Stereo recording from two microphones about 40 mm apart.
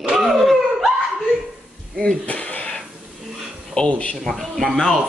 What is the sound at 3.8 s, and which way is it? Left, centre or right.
Speech, left.